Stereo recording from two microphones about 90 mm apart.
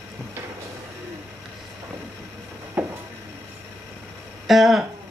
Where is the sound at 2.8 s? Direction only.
15° right (ahead or behind).